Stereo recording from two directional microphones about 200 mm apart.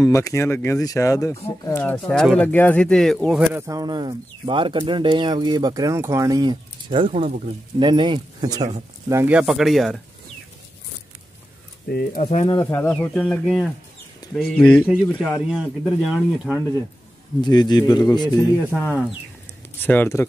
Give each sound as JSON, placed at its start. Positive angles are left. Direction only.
{"t": 0.0, "sound": "speech", "side_deg": 15}
{"t": 9.1, "sound": "speech", "side_deg": -10}
{"t": 11.9, "sound": "speech", "side_deg": 45}
{"t": 12.5, "sound": "speech", "side_deg": 10}
{"t": 17.4, "sound": "a man's voice", "side_deg": 20}
{"t": 19.8, "sound": "speech", "side_deg": 10}